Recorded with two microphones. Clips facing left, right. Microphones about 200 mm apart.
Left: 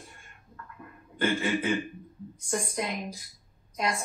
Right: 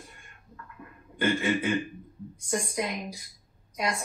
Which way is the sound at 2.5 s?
Centre (ahead or behind).